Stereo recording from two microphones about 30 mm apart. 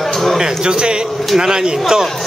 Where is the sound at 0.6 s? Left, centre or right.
Right.